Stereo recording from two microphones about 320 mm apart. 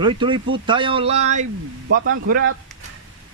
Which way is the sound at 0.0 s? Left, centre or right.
Centre.